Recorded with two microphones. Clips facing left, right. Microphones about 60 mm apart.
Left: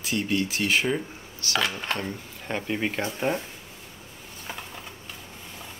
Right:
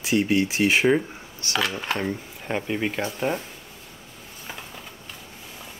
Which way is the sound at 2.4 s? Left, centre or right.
Centre.